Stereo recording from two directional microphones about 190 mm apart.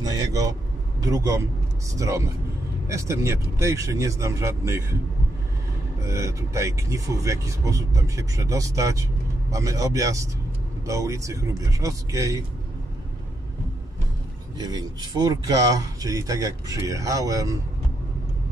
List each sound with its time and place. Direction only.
0.0 s vehicle: 20° right (ahead or behind)
1.0 s speech: 15° right (ahead or behind)
6.0 s speech: 15° right (ahead or behind)
14.6 s speech: 20° right (ahead or behind)